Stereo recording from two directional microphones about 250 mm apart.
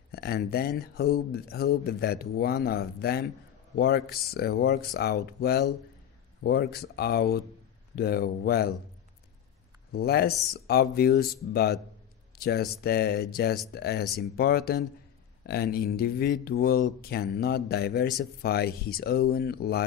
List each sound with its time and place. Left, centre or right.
0.1 s speech: left
9.9 s speech: left